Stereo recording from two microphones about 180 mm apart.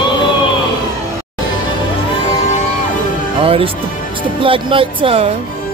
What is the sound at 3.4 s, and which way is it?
Music, 30° right (ahead or behind).